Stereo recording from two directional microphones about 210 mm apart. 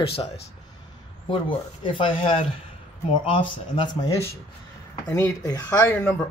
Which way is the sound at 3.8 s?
15° left (ahead or behind).